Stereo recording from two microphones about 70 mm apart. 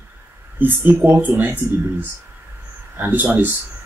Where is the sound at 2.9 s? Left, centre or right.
Right.